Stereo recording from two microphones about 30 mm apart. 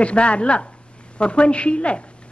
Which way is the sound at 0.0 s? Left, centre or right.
Left.